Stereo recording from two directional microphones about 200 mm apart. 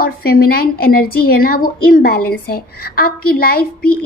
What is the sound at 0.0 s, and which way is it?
A woman's voice, 45° left (ahead or behind).